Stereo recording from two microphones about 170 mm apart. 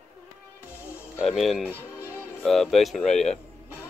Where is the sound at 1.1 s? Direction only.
Centre (ahead or behind).